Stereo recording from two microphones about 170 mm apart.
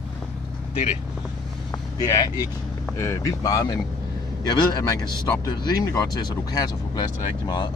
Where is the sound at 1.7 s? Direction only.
20° left (ahead or behind).